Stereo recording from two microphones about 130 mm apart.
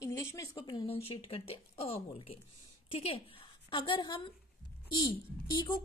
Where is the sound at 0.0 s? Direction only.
25° left (ahead or behind).